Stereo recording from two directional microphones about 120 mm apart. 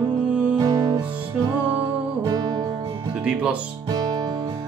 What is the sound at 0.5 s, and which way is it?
Music, 35° right (ahead or behind).